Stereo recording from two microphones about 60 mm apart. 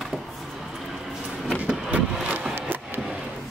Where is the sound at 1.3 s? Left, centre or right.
Centre.